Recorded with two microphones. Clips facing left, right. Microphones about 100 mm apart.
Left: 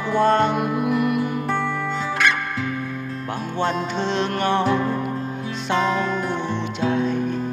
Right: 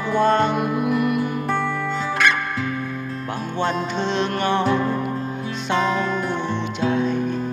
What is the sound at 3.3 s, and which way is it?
Music, 80° left.